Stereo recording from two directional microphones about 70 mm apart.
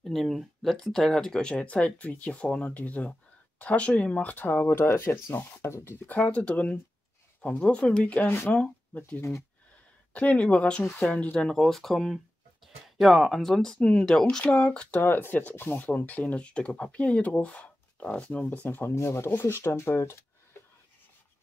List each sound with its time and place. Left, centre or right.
0.0 s speech: centre; by 6.1 s left
6.1 s speech: left
14.2 s speech: centre
15.0 s speech: left
18.9 s speech: left